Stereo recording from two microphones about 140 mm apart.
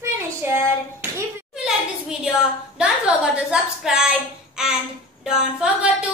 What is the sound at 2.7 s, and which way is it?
A woman's voice, 5° right (ahead or behind).